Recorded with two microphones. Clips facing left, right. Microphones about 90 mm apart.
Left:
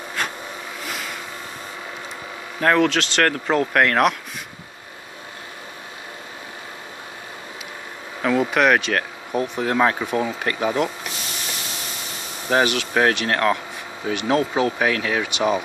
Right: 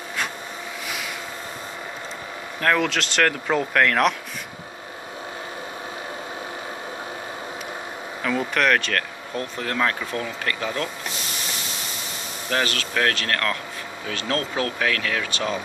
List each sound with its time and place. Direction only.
0.8 s a sound: 5° right (ahead or behind)
2.6 s speech: centre (ahead or behind)
8.2 s speech: 5° left (ahead or behind)
12.4 s speech: 15° left (ahead or behind)